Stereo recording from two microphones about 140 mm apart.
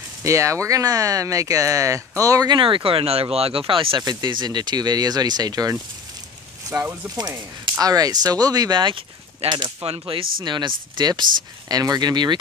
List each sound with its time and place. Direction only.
0.2 s speech: 20° right (ahead or behind)
6.7 s speech: 15° right (ahead or behind)
7.2 s speech: 30° right (ahead or behind)